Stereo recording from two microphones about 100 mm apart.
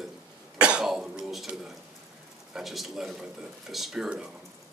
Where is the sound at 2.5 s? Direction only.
Centre (ahead or behind).